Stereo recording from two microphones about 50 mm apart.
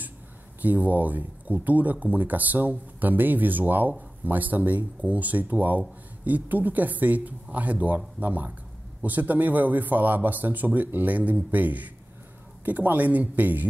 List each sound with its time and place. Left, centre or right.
0.6 s speech: right